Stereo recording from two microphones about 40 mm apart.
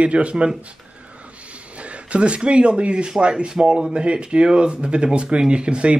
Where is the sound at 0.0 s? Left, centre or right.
Right.